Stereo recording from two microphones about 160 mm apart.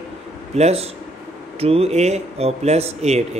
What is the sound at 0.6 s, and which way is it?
Speech, 40° right (ahead or behind).